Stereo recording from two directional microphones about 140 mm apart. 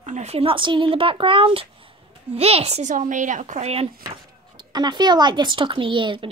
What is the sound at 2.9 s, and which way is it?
Speech, 65° right (ahead or behind).